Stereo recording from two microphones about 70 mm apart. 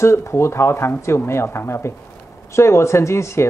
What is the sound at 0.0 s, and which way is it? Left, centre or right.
Speech, left.